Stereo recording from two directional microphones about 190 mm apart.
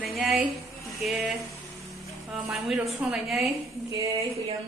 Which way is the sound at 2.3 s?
5° right (ahead or behind).